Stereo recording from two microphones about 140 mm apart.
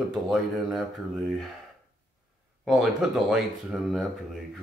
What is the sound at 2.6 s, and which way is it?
Speech, centre (ahead or behind).